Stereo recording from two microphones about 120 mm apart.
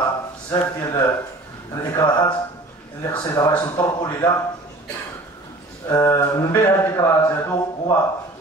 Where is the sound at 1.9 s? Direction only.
40° left (ahead or behind).